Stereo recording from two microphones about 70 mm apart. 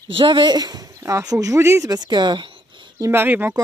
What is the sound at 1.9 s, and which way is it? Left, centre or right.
Speech, right.